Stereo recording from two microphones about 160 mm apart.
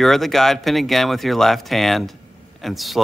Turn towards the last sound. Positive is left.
turn(degrees=0)  # may be behind; listen again after turning